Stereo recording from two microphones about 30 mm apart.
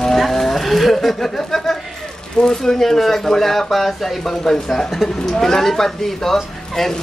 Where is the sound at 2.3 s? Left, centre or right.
Left.